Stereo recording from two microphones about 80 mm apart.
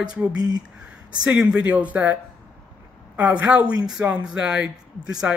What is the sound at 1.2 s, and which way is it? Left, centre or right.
Speech, centre.